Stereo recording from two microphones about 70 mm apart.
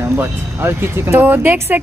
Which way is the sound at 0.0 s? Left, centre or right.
Right.